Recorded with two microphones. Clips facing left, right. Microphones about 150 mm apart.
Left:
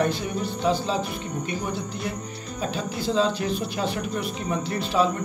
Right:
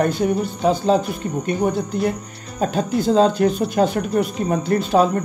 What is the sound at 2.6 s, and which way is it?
Speech, 50° right (ahead or behind).